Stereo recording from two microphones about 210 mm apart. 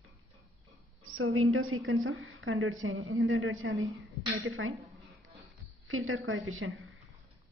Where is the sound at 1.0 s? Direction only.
85° right.